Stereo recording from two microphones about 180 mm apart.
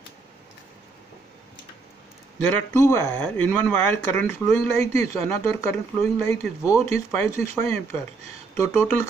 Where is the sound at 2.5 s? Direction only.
15° left (ahead or behind).